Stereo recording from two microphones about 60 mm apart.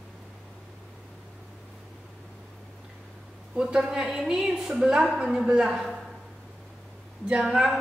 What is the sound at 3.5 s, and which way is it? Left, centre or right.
A woman's voice, centre.